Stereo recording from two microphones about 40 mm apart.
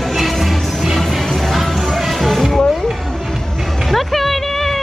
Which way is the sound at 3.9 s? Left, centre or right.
Centre.